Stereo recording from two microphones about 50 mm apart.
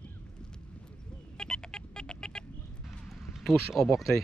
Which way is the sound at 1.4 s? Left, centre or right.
Centre.